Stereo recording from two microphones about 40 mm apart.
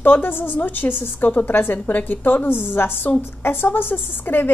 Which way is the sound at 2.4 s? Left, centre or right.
Left.